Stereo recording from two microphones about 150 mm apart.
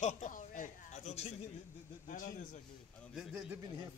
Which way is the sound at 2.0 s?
60° left (ahead or behind).